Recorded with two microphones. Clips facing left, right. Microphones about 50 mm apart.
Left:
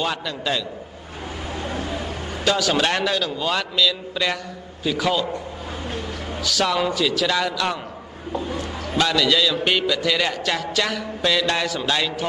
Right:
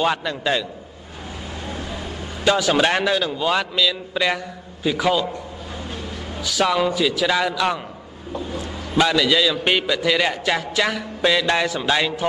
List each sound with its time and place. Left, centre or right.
0.0 s a man's voice: right
2.4 s a man's voice: centre
6.4 s a man's voice: centre
8.9 s a man's voice: centre
11.6 s a man's voice: right